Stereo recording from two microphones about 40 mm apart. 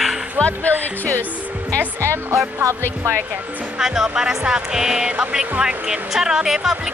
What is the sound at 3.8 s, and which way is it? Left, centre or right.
Speech, centre.